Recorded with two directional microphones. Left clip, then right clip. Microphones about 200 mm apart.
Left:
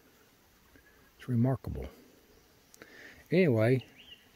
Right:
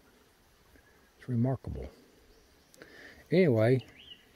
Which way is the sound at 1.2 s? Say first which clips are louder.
Left 1 dB; 15° left (ahead or behind).